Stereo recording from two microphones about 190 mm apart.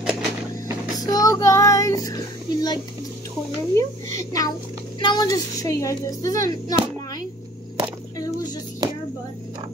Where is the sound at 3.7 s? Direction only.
15° left (ahead or behind).